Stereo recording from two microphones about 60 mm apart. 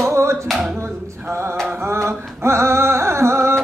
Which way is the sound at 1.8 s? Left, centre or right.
Right.